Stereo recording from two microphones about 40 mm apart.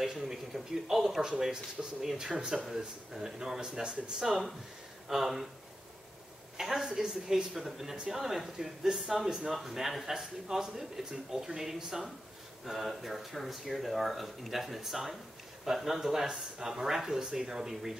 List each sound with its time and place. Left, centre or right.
0.0 s speech: centre
6.5 s a woman's voice: centre
6.9 s a woman's voice: centre
7.5 s speech: centre